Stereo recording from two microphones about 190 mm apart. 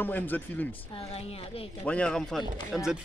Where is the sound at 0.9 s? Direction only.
30° left (ahead or behind).